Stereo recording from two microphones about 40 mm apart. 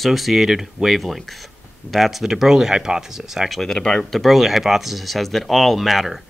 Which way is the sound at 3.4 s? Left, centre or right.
Centre.